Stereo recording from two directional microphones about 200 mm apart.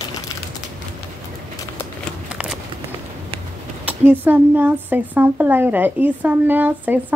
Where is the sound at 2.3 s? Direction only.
5° right (ahead or behind).